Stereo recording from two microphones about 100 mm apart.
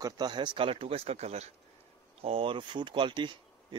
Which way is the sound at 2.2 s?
70° right (ahead or behind).